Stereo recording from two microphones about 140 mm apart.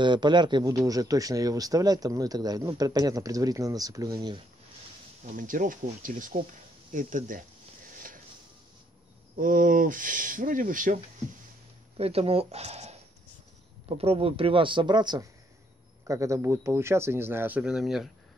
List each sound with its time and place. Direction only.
0.0 s speech: 30° right (ahead or behind)
5.2 s speech: 70° right (ahead or behind)
9.4 s speech: 75° right (ahead or behind)
12.0 s speech: 45° right (ahead or behind); by 18.1 s centre (ahead or behind)